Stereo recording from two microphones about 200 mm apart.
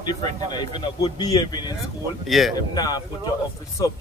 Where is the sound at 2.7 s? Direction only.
20° left (ahead or behind).